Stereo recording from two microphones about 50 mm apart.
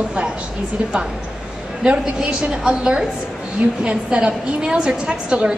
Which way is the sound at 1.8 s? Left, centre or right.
Centre.